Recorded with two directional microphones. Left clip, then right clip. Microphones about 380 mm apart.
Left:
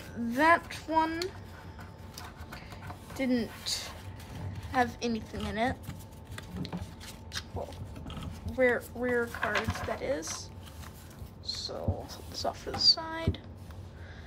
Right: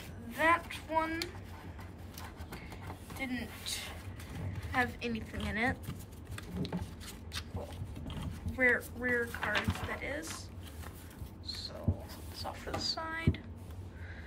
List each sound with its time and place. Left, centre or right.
0.4 s speech: centre
3.2 s speech: centre
8.1 s speech: centre
11.4 s a sound: centre